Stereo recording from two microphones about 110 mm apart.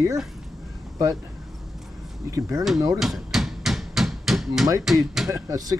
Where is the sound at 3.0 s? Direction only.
5° right (ahead or behind).